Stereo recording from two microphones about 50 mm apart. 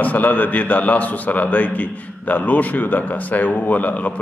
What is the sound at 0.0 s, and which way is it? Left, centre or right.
A man's voice, left.